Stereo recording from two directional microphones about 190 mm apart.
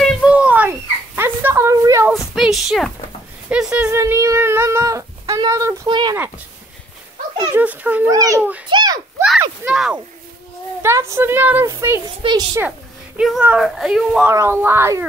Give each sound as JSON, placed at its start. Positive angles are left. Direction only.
{"t": 0.0, "sound": "a sound", "side_deg": 0}
{"t": 2.1, "sound": "a sound", "side_deg": 0}
{"t": 3.4, "sound": "speech", "side_deg": -5}
{"t": 7.5, "sound": "a woman's voice", "side_deg": -10}
{"t": 8.1, "sound": "a child's voice", "side_deg": -20}
{"t": 8.4, "sound": "a woman's voice", "side_deg": -10}
{"t": 8.6, "sound": "speech", "side_deg": -25}
{"t": 9.4, "sound": "a woman's voice", "side_deg": -5}
{"t": 13.2, "sound": "speech", "side_deg": -5}
{"t": 14.3, "sound": "a woman's voice", "side_deg": -15}